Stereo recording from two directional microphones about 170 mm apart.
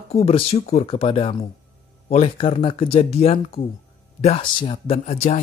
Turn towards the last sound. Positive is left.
turn(degrees=40)  # may be behind; listen again after turning